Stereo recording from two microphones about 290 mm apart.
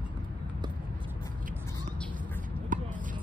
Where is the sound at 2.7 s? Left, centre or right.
Right.